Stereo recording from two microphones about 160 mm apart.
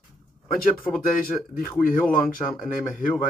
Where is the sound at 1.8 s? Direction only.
60° left (ahead or behind).